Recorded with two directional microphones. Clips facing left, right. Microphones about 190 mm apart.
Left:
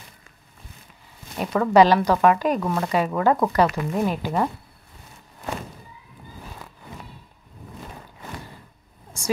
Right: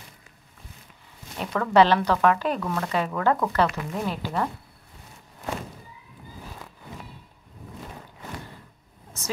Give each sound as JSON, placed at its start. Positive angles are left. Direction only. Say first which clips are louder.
{"t": 1.4, "sound": "speech", "louder": "left 3 dB", "side_deg": 15}
{"t": 9.1, "sound": "a woman's voice", "louder": "left 7 dB", "side_deg": 10}